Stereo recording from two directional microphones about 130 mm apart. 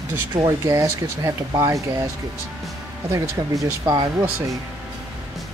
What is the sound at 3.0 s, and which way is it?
Speech, 25° right (ahead or behind).